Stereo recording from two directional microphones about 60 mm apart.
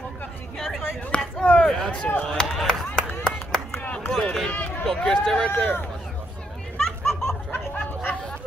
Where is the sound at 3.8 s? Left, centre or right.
Left.